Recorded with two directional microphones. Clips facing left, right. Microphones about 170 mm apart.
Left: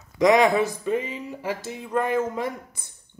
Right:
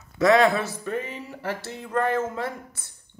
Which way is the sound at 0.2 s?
15° left (ahead or behind).